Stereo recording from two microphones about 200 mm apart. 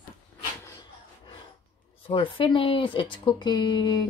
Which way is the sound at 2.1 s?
25° left (ahead or behind).